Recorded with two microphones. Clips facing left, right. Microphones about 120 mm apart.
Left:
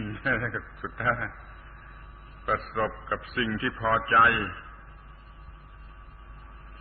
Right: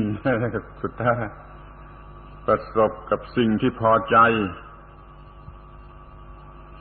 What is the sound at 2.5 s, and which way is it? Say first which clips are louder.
A man's voice: right 9 dB; 35° right (ahead or behind).